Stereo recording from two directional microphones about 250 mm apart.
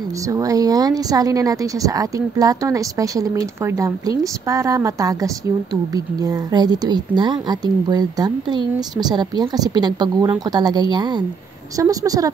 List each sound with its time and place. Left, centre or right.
0.3 s speech: centre